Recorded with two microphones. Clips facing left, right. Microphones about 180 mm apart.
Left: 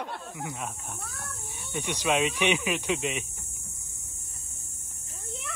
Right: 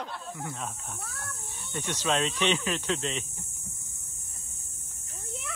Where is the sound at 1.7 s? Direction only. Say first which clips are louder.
Left 2 dB; 10° left (ahead or behind).